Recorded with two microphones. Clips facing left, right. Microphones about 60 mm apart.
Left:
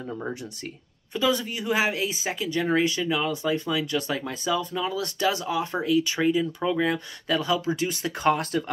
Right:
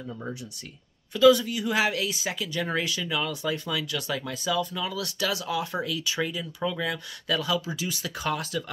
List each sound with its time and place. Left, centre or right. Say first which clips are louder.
0.0 s speech: left 4 dB; left